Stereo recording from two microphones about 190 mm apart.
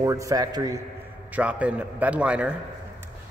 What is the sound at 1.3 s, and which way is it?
Speech, 5° right (ahead or behind).